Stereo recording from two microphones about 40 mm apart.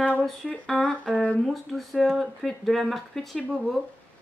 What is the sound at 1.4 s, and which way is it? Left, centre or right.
A woman's voice, centre.